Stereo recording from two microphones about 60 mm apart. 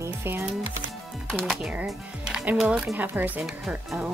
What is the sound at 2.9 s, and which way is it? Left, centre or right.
Speech, right.